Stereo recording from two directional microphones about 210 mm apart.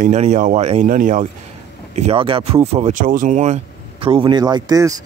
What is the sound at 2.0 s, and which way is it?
Speech, 30° right (ahead or behind).